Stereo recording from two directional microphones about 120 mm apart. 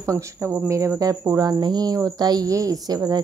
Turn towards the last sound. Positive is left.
turn(degrees=-35)  # may be behind; listen again after turning